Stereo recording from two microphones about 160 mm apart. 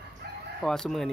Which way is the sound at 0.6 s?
5° left (ahead or behind).